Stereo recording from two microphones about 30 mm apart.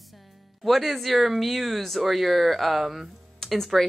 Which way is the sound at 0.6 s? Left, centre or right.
Centre.